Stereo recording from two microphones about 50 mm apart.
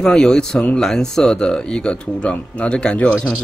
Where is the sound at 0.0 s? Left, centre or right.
Centre.